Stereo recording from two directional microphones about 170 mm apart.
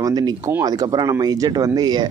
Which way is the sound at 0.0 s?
25° right (ahead or behind).